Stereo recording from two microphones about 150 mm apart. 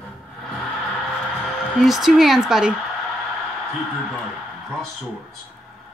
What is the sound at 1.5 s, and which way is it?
Speech, 5° left (ahead or behind).